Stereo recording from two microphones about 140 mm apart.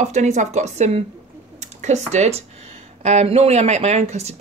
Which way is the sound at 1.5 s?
55° right (ahead or behind).